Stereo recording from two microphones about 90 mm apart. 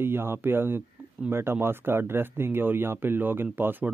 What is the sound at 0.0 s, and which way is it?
Speech, 25° right (ahead or behind).